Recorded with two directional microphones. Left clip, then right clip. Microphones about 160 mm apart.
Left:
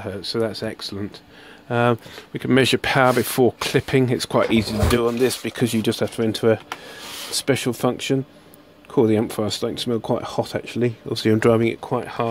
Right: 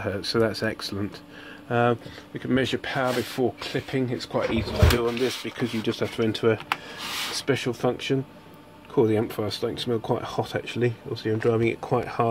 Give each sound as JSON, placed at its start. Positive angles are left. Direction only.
{"t": 0.0, "sound": "speech", "side_deg": 5}
{"t": 1.7, "sound": "speech", "side_deg": 30}
{"t": 2.3, "sound": "speech", "side_deg": 55}
{"t": 5.0, "sound": "speech", "side_deg": 55}
{"t": 11.1, "sound": "speech", "side_deg": 80}
{"t": 11.6, "sound": "speech", "side_deg": 25}
{"t": 11.9, "sound": "speech", "side_deg": 10}